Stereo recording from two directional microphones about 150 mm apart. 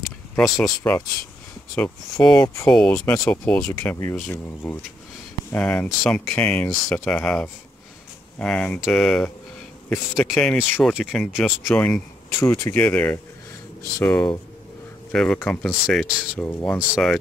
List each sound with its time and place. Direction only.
0.4 s speech: 10° left (ahead or behind)
2.4 s speech: 20° left (ahead or behind)
2.7 s speech: 5° left (ahead or behind)
16.9 s speech: centre (ahead or behind)